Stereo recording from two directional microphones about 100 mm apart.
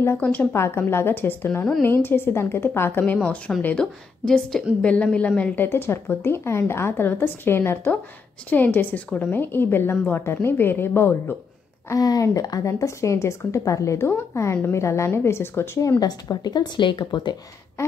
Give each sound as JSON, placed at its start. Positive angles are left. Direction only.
{"t": 0.0, "sound": "a woman's voice", "side_deg": 20}
{"t": 3.6, "sound": "a woman's voice", "side_deg": 10}
{"t": 5.7, "sound": "a woman's voice", "side_deg": 25}
{"t": 11.9, "sound": "a woman's voice", "side_deg": 35}
{"t": 16.0, "sound": "speech", "side_deg": 40}
{"t": 17.8, "sound": "a sound", "side_deg": 30}